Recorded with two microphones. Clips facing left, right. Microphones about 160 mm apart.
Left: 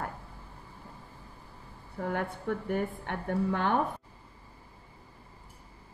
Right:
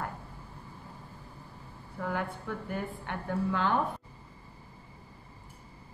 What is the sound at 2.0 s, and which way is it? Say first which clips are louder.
A woman's voice: left 1 dB; 50° left (ahead or behind).